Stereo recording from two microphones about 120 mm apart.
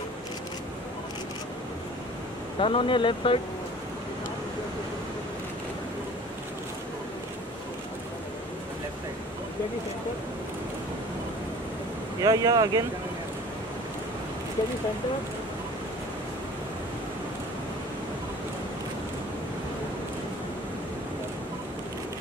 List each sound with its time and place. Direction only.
2.6 s speech: 45° left (ahead or behind)
12.2 s speech: 30° right (ahead or behind)